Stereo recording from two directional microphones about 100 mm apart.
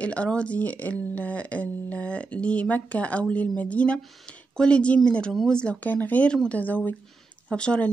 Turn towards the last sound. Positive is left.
turn(degrees=10)  # may be behind; listen again after turning